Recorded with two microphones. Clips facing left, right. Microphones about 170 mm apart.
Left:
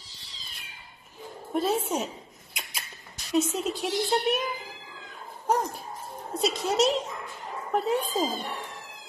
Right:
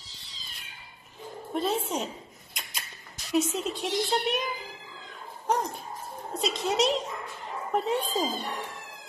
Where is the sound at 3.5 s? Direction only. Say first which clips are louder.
Left 1 dB; centre (ahead or behind).